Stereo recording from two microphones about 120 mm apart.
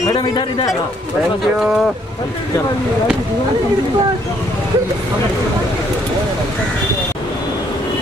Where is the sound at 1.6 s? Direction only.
Centre (ahead or behind).